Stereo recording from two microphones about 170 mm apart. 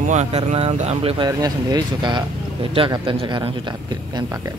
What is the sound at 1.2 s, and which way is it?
Speech, 20° right (ahead or behind).